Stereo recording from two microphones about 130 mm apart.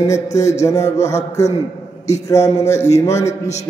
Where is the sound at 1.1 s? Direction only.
60° left (ahead or behind).